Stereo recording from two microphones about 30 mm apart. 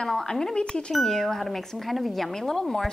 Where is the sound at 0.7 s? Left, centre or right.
Left.